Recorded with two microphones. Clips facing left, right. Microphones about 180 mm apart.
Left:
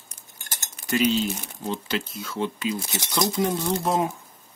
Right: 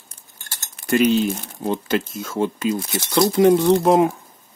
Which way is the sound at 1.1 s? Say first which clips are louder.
Right 6 dB; 55° right (ahead or behind).